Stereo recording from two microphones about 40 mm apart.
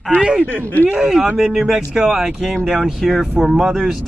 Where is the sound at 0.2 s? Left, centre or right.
Right.